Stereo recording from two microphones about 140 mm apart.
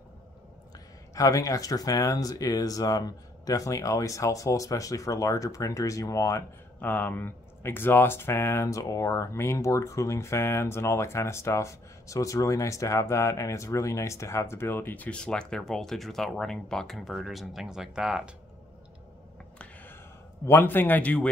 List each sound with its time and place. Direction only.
1.1 s speech: 25° left (ahead or behind); by 18.3 s 5° right (ahead or behind)
19.6 s a sound: 15° left (ahead or behind)
20.4 s speech: 15° left (ahead or behind)